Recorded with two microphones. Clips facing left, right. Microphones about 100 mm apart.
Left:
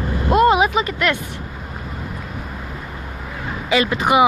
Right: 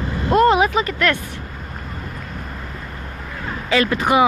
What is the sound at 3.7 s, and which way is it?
Speech, 15° left (ahead or behind).